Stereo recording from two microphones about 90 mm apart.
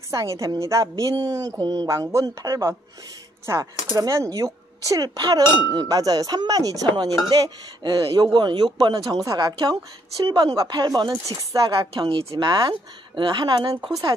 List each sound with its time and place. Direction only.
0.1 s speech: 35° right (ahead or behind)
3.9 s speech: 40° right (ahead or behind)
9.2 s speech: 40° right (ahead or behind)
9.6 s speech: 50° right (ahead or behind)
11.2 s speech: 40° right (ahead or behind)
11.8 s speech: 65° right (ahead or behind); by 12.4 s 80° right
12.4 s speech: 60° right (ahead or behind)